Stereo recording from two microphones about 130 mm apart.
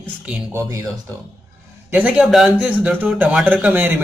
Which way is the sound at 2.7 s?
15° right (ahead or behind).